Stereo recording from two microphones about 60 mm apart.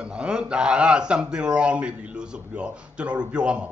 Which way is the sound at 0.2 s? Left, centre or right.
Centre.